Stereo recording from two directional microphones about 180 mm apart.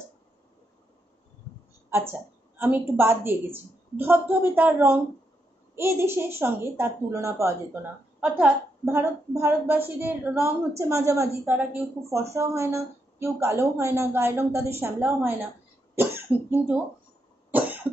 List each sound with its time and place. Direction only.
1.9 s a sound: 15° right (ahead or behind)
3.0 s a woman's voice: 15° right (ahead or behind)
17.5 s cough: 10° right (ahead or behind)